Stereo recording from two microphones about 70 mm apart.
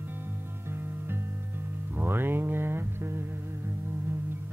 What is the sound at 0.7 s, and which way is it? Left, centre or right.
Music, right.